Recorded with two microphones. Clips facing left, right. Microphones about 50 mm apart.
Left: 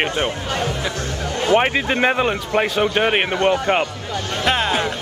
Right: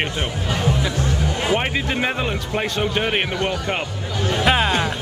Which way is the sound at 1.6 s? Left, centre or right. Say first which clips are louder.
Left 4 dB; left.